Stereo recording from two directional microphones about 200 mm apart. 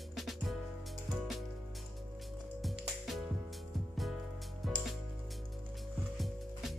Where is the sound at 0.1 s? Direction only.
Centre (ahead or behind).